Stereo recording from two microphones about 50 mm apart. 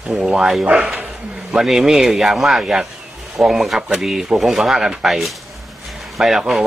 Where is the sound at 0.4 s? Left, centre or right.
Centre.